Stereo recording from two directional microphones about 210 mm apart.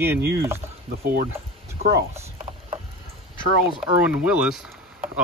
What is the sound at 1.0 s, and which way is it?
Speech, 40° right (ahead or behind).